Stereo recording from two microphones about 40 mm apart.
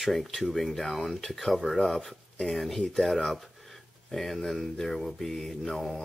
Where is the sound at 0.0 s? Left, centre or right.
Centre.